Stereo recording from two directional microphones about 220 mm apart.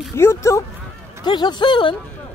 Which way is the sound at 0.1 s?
10° left (ahead or behind).